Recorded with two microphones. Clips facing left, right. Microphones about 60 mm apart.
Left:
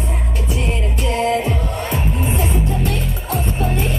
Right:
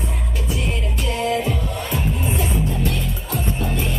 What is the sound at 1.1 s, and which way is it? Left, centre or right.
Music, left.